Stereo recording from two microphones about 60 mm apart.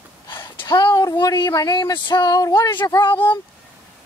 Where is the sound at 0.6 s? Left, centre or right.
Left.